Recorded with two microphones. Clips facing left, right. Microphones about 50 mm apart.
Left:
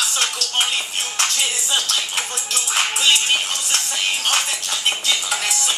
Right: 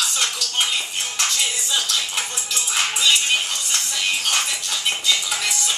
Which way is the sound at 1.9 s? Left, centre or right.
Centre.